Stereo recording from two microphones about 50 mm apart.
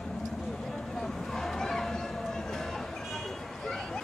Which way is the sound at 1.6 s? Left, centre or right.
Centre.